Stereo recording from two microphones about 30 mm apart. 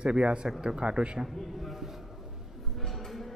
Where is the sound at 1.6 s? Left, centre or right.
Centre.